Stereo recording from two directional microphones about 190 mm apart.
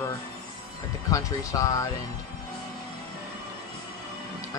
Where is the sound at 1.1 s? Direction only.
15° left (ahead or behind).